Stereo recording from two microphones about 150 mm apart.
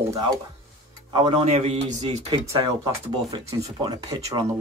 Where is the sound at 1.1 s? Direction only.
40° right (ahead or behind).